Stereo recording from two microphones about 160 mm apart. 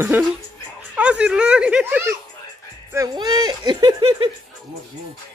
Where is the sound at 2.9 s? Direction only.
20° right (ahead or behind).